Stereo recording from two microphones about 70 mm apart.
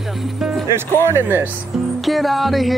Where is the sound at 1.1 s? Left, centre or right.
Right.